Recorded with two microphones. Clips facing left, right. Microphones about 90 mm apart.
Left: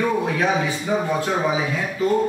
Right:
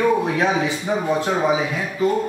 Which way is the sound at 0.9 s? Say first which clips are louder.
Left 2 dB; 20° right (ahead or behind).